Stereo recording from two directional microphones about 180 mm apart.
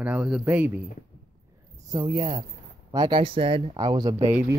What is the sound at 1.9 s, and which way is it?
Speech, 30° right (ahead or behind).